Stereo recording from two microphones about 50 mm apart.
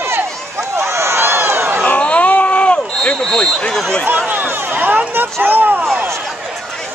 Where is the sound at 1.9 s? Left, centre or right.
Left.